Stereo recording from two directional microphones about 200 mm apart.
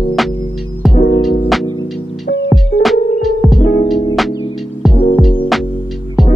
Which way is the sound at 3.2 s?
Centre (ahead or behind).